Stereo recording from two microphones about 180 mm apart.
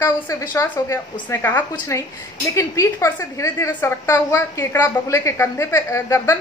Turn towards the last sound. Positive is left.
turn(degrees=15)  # may be behind; listen again after turning